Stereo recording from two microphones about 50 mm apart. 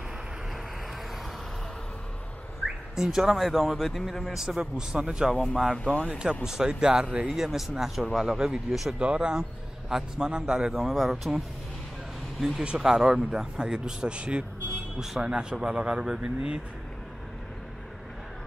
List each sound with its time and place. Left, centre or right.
3.0 s speech: centre
4.4 s speech: centre
9.0 s speech: right
9.4 s speech: centre
10.7 s speech: centre
12.4 s speech: centre